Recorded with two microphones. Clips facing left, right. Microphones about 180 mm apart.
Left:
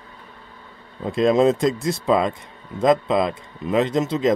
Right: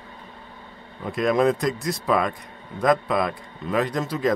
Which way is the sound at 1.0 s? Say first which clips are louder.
Left 4 dB; 25° left (ahead or behind).